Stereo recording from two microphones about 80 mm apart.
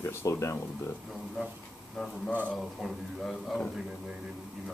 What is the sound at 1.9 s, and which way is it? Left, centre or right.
A man's voice, centre.